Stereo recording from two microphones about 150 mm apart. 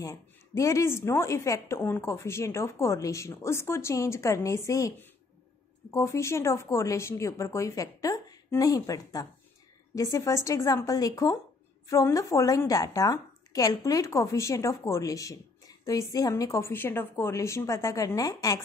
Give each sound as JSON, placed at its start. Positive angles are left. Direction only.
{"t": 0.0, "sound": "a woman's voice", "side_deg": 20}